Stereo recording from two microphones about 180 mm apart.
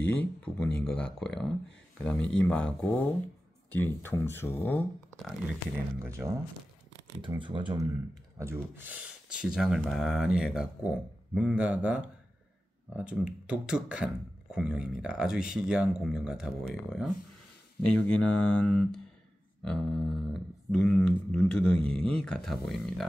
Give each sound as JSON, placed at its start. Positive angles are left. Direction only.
{"t": 0.0, "sound": "speech", "side_deg": 10}
{"t": 5.9, "sound": "speech", "side_deg": -15}
{"t": 7.2, "sound": "speech", "side_deg": -25}